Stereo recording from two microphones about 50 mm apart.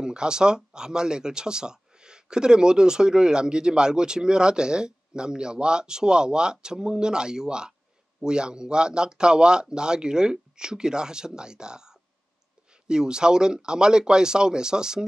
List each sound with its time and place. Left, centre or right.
0.0 s speech: centre